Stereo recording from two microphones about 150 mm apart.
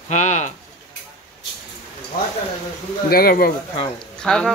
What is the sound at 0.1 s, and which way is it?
Sheep, 50° left (ahead or behind).